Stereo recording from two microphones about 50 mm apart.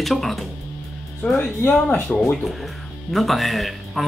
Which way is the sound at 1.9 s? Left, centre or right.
Left.